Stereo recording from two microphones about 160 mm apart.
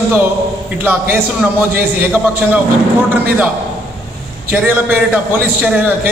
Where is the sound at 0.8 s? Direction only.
10° right (ahead or behind).